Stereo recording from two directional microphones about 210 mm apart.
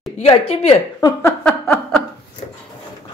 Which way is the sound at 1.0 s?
15° left (ahead or behind).